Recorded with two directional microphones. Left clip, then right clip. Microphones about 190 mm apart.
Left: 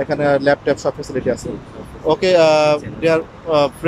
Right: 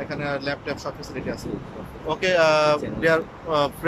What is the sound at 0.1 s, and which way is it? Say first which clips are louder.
Speech: left 14 dB; 40° left (ahead or behind).